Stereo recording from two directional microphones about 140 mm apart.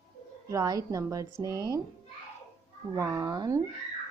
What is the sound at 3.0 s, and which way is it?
Speech, 20° right (ahead or behind).